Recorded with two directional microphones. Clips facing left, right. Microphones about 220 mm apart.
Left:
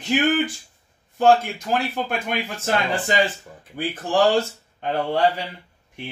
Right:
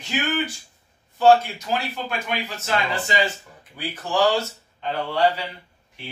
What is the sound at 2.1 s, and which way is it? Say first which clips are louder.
A man's voice: left 2 dB; 55° left (ahead or behind).